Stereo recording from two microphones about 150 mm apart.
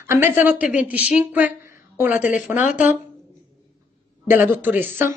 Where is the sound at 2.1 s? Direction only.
60° left (ahead or behind).